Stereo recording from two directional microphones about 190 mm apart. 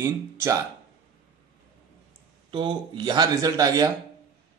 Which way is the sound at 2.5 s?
25° right (ahead or behind).